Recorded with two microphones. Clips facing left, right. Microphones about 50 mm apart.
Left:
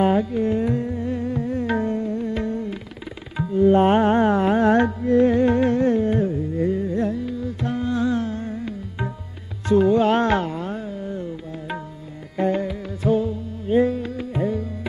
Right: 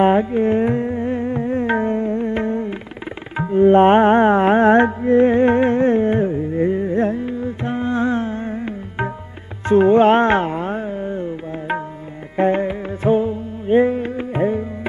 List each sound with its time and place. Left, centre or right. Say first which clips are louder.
0.0 s music: right 5 dB; right